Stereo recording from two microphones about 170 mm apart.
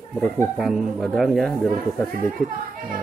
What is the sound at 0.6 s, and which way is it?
Speech, centre (ahead or behind).